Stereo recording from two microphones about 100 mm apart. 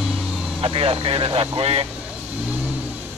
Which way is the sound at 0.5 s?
70° right (ahead or behind).